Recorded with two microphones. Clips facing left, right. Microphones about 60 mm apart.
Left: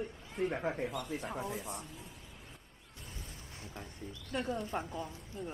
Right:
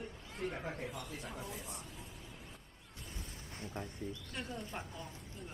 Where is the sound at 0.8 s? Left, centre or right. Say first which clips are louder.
Left 6 dB; centre.